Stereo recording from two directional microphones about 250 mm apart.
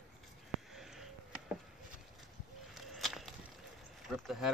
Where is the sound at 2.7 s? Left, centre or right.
Centre.